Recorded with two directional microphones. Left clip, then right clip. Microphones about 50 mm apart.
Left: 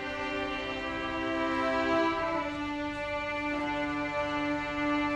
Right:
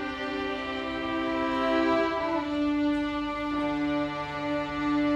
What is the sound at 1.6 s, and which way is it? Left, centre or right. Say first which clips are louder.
Music: right 4 dB; left.